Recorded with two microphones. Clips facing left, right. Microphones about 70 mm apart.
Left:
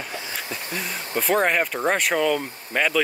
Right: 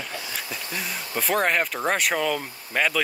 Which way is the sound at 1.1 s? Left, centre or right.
Centre.